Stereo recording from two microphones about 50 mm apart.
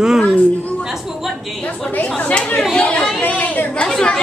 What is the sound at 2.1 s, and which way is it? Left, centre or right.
A woman's voice, left.